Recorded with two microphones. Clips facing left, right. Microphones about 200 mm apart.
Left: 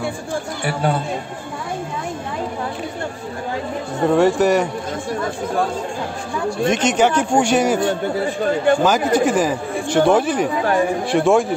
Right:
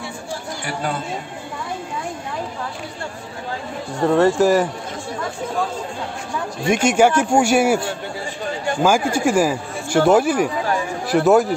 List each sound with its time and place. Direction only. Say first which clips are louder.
4.1 s speech: even; 5° left (ahead or behind)
6.7 s speech: right 3 dB; 10° right (ahead or behind)
8.2 s speech: left 8 dB; 55° left (ahead or behind)
8.8 s speech: left 1 dB; 10° right (ahead or behind)
10.6 s speech: left 5 dB; 55° left (ahead or behind)
11.1 s speech: right 3 dB; 5° right (ahead or behind)